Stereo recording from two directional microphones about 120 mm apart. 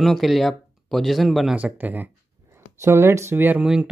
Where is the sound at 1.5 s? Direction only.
15° right (ahead or behind).